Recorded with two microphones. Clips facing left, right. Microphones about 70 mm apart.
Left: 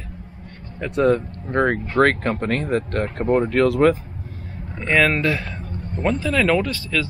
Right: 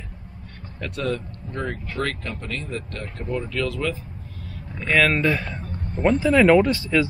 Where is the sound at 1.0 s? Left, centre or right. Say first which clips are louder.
Left 9 dB; left.